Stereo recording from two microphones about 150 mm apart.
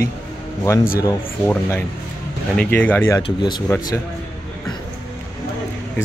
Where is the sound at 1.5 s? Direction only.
15° left (ahead or behind).